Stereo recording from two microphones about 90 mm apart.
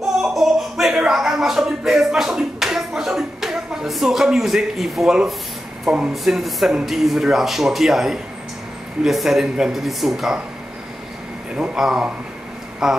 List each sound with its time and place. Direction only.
0.2 s a sound: 5° right (ahead or behind)
5.9 s speech: 5° right (ahead or behind)
11.5 s speech: 5° right (ahead or behind)